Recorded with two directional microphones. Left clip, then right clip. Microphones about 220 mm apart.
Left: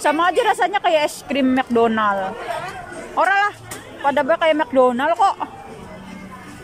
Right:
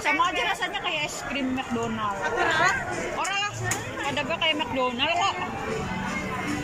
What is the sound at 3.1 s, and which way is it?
Music, 40° left (ahead or behind).